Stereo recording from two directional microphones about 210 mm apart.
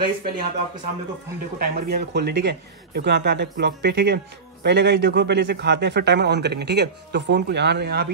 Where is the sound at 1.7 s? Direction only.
50° right (ahead or behind).